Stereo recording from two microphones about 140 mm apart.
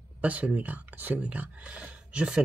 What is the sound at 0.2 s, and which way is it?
Speech, 10° right (ahead or behind).